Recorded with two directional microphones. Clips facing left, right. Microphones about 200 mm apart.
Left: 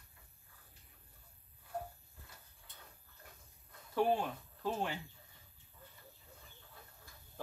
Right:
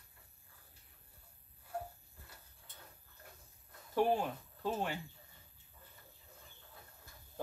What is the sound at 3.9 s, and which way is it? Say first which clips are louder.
Speech: right 1 dB; 10° right (ahead or behind).